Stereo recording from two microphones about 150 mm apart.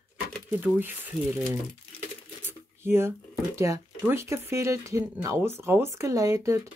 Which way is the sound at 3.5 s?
20° right (ahead or behind).